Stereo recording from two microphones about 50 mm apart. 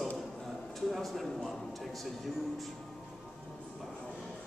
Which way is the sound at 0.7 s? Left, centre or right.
Centre.